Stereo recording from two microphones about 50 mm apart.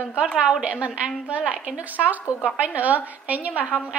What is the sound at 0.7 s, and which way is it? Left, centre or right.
A woman's voice, right.